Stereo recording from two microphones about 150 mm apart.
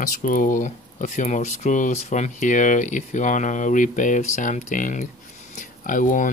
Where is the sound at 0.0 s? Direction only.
60° left (ahead or behind).